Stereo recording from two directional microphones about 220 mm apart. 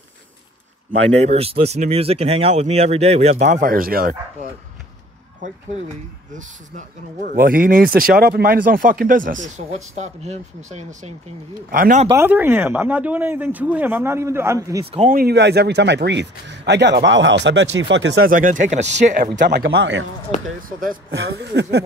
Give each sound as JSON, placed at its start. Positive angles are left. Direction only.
{"t": 1.2, "sound": "speech", "side_deg": -30}
{"t": 7.2, "sound": "speech", "side_deg": -40}
{"t": 12.1, "sound": "speech", "side_deg": -10}
{"t": 15.0, "sound": "a man's voice", "side_deg": -45}
{"t": 19.2, "sound": "a man's voice", "side_deg": -45}
{"t": 20.6, "sound": "speech", "side_deg": -40}
{"t": 21.1, "sound": "a man's voice", "side_deg": -55}